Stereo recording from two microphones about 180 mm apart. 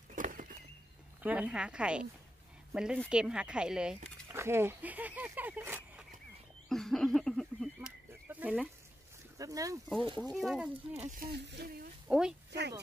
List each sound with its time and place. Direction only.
0.1 s a sound: 45° right (ahead or behind)
1.2 s speech: 5° right (ahead or behind)
6.7 s a sound: centre (ahead or behind)
8.3 s a sound: 10° right (ahead or behind)
9.4 s speech: 20° right (ahead or behind)
10.3 s speech: centre (ahead or behind)
10.9 s speech: 35° right (ahead or behind)
11.1 s speech: 65° right (ahead or behind)
12.1 s speech: 5° right (ahead or behind)